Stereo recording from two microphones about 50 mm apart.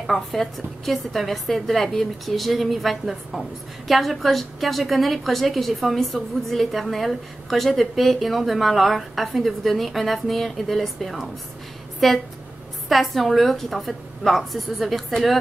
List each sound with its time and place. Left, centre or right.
0.0 s a woman's voice: centre